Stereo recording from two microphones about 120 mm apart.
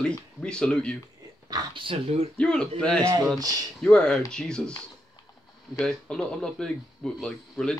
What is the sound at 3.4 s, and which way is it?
Speech, 30° right (ahead or behind).